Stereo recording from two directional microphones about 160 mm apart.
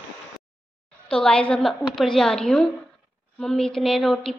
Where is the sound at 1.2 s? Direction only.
5° left (ahead or behind).